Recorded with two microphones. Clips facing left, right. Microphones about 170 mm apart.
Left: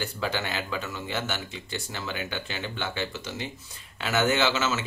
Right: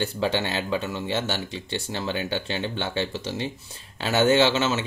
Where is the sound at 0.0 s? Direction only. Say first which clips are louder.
Right 5 dB; 30° right (ahead or behind).